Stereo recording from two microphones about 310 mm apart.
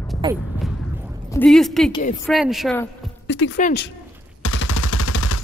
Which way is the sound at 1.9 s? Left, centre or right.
Left.